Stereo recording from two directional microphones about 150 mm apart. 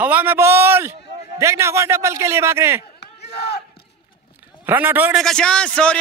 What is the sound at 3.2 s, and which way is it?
Battle cry, 90° left.